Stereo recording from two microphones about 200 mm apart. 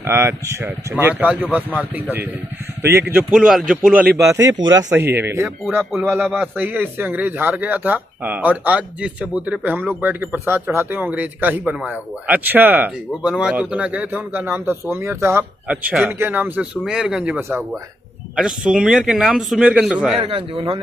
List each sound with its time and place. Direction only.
0.0 s a man's voice: 10° right (ahead or behind)
20.2 s speech: 30° right (ahead or behind)